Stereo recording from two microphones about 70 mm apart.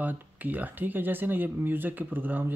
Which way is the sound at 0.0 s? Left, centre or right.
Right.